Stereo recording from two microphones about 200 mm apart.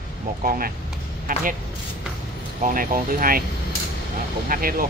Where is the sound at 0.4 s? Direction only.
45° right (ahead or behind).